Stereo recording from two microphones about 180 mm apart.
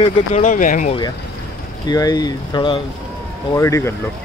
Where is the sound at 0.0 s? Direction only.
30° left (ahead or behind).